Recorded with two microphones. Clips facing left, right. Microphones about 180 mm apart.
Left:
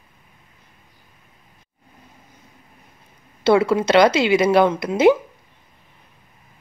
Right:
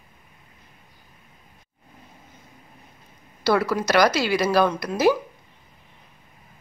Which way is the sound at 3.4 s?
25° left (ahead or behind).